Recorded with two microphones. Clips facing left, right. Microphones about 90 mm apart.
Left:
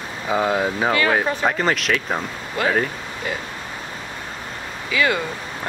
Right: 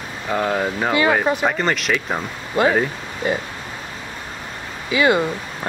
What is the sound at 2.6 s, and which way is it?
Speech, 25° right (ahead or behind).